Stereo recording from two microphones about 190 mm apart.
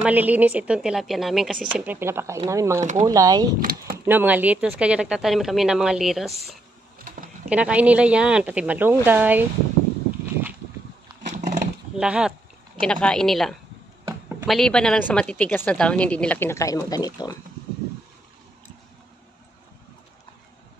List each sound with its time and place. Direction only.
0.0 s speech: 10° right (ahead or behind)
2.8 s speech: 40° right (ahead or behind)
3.1 s speech: 20° right (ahead or behind)
3.6 s speech: 50° right (ahead or behind)
4.0 s speech: 10° right (ahead or behind)
7.4 s speech: 5° right (ahead or behind)
11.2 s roaring cats: 40° right (ahead or behind)
12.0 s a woman's voice: 5° right (ahead or behind); by 17.4 s 20° left (ahead or behind)